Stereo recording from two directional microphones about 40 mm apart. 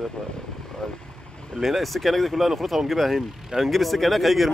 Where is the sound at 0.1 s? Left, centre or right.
Centre.